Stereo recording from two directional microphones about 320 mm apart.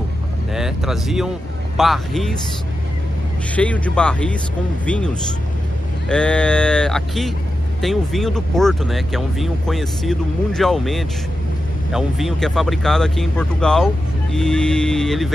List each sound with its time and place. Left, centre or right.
0.6 s speech: centre
3.5 s speech: centre